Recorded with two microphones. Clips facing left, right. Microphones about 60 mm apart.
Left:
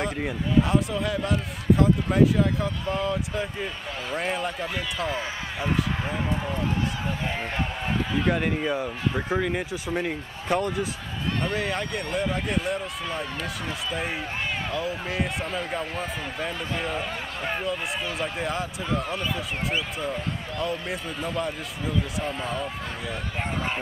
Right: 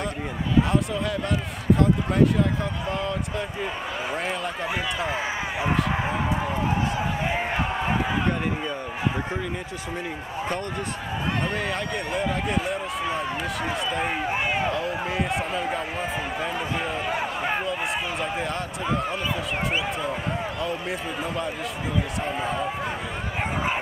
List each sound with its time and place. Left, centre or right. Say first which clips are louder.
0.6 s speech: even; centre
5.0 s a sound: right 2 dB; centre
7.2 s run: right 3 dB; centre
10.5 s speech: left 8 dB; centre
14.7 s speech: right 2 dB; centre
18.2 s speech: right 1 dB; centre
22.2 s speech: right 2 dB; centre